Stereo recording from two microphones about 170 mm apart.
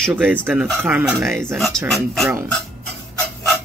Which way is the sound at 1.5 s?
Centre (ahead or behind).